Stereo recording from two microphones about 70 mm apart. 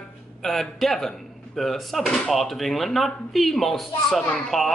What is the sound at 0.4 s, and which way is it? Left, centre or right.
Speech, centre.